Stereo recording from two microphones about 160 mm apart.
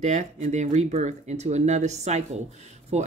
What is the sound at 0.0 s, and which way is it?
Speech, 50° right (ahead or behind).